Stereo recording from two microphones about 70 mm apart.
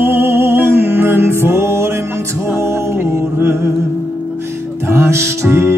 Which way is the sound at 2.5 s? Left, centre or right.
Right.